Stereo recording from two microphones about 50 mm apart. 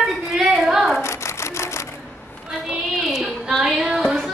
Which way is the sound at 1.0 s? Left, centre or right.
Left.